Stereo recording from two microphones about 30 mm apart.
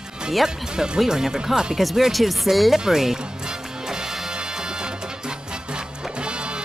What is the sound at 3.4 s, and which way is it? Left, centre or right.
Music, right.